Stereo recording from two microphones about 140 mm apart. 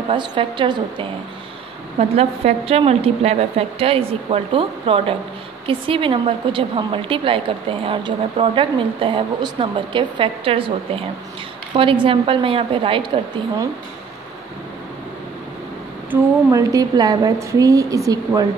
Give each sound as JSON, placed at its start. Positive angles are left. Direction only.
{"t": 0.1, "sound": "a woman's voice", "side_deg": -35}
{"t": 2.0, "sound": "a woman's voice", "side_deg": -45}
{"t": 16.1, "sound": "a woman's voice", "side_deg": -20}